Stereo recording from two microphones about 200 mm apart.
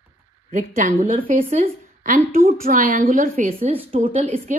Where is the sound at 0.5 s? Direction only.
40° right (ahead or behind).